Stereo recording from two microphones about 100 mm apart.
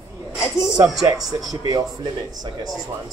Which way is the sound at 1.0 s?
40° right (ahead or behind).